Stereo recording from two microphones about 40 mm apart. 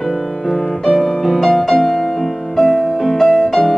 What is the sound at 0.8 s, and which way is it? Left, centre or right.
Music, centre.